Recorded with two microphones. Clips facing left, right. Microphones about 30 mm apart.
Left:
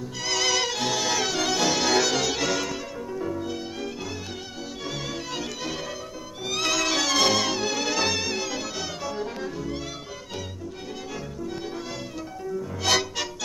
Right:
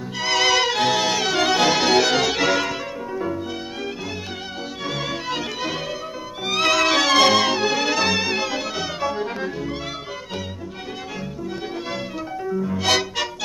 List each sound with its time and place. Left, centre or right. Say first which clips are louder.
0.2 s music: right 6 dB; right
12.4 s music: right 5 dB; right